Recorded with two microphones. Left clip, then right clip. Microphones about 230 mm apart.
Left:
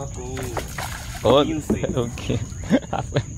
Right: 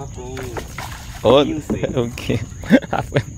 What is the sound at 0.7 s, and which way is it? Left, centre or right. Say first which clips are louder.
Dog: left 1 dB; centre.